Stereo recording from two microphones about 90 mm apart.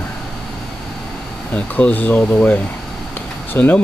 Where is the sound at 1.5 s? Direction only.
15° left (ahead or behind).